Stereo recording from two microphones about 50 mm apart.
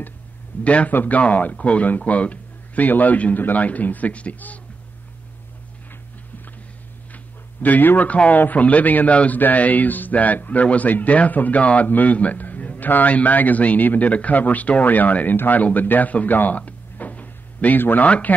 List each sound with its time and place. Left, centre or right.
0.7 s a man's voice: left
7.6 s a man's voice: left